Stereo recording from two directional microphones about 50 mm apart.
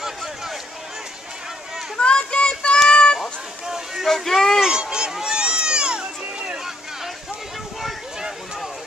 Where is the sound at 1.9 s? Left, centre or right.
Centre.